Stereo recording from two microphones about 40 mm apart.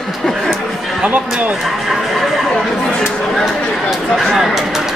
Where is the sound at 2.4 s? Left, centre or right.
Centre.